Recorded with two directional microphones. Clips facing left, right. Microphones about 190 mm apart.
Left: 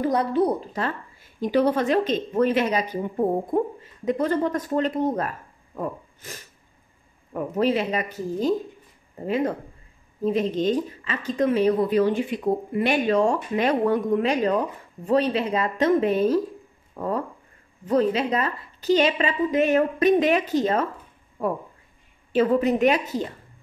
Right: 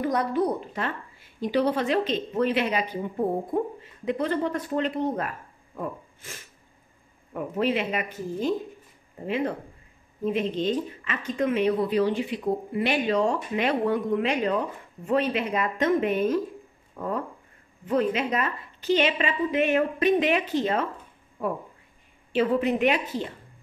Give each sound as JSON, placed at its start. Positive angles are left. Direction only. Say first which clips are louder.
{"t": 0.0, "sound": "a woman's voice", "louder": "left 3 dB", "side_deg": 30}
{"t": 1.4, "sound": "a woman's voice", "louder": "left 3 dB", "side_deg": 45}
{"t": 22.3, "sound": "a woman's voice", "louder": "left 3 dB", "side_deg": 40}